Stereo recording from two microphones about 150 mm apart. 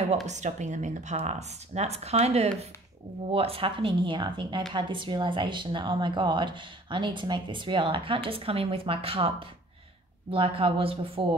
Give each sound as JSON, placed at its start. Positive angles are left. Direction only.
{"t": 0.3, "sound": "speech", "side_deg": -50}